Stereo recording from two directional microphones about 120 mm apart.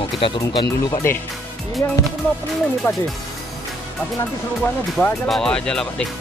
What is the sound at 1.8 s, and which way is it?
Speech, 20° left (ahead or behind).